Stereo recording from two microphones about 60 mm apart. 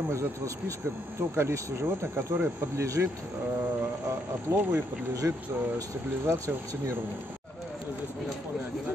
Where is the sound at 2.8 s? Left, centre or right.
Right.